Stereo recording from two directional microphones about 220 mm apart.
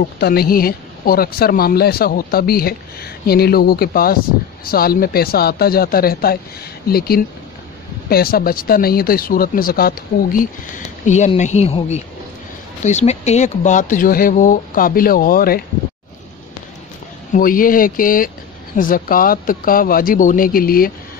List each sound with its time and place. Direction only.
0.2 s speech: 45° left (ahead or behind)
17.3 s speech: 40° left (ahead or behind)